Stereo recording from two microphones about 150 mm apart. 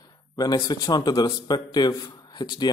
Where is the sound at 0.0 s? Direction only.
25° left (ahead or behind).